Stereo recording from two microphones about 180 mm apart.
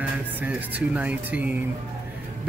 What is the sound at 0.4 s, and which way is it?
Speech, 10° right (ahead or behind).